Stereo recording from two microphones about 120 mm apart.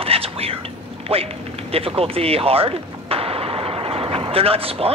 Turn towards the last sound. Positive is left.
turn(degrees=-55)  # may be behind; listen again after turning